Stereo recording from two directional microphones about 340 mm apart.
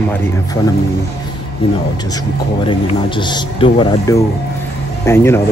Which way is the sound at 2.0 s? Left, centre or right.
Centre.